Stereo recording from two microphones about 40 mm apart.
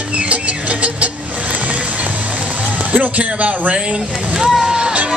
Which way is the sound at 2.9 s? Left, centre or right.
Right.